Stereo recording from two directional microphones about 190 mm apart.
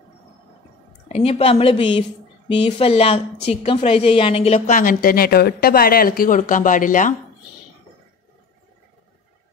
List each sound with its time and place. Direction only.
1.0 s a woman's voice: 30° left (ahead or behind)
4.6 s a woman's voice: 45° left (ahead or behind)